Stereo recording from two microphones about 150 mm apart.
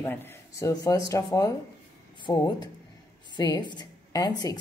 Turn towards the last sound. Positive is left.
turn(degrees=25)  # may be behind; listen again after turning